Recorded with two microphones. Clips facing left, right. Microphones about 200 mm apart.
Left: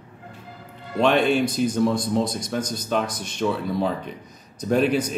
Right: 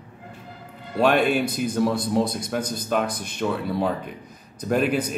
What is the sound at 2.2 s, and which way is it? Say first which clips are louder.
Speech: right 1 dB; 60° right (ahead or behind).